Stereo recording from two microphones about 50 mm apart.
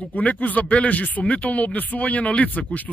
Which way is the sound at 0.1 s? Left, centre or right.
Left.